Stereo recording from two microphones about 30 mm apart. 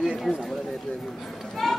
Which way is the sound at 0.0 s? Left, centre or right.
Centre.